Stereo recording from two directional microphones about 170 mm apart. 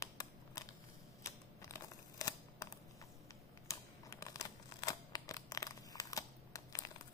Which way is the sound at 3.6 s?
20° left (ahead or behind).